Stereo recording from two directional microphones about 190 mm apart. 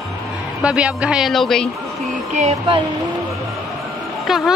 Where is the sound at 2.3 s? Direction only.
35° right (ahead or behind).